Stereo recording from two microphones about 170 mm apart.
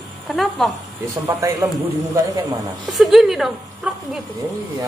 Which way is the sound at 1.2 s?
20° right (ahead or behind).